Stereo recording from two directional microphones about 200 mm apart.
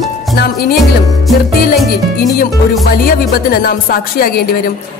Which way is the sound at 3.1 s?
45° left (ahead or behind).